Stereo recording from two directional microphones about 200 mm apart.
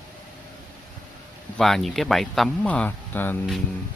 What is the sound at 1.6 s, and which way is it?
Speech, centre (ahead or behind).